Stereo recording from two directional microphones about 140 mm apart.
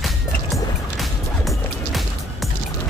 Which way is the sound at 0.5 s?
Centre (ahead or behind).